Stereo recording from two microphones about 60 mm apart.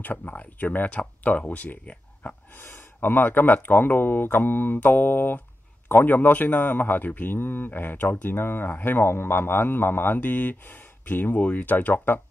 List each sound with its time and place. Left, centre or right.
0.0 s speech: left